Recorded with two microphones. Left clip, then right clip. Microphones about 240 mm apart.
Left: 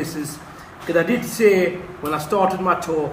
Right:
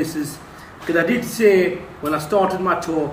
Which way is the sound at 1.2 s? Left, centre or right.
Centre.